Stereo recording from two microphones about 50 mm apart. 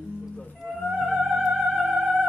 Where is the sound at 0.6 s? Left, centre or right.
Centre.